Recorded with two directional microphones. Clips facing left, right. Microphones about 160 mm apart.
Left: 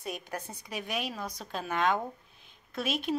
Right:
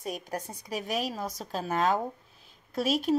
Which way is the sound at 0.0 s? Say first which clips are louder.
Right 3 dB; 40° right (ahead or behind).